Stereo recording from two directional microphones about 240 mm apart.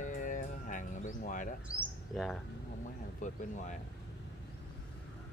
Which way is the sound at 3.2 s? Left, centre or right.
Left.